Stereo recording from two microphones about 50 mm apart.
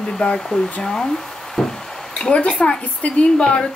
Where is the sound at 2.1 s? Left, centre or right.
Left.